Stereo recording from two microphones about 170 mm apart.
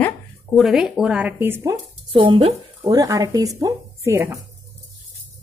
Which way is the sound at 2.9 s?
20° right (ahead or behind).